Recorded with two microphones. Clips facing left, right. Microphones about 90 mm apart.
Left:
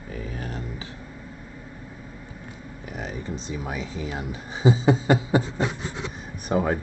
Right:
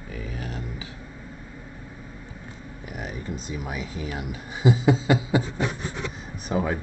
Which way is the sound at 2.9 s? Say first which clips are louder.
Left 1 dB; 35° left (ahead or behind).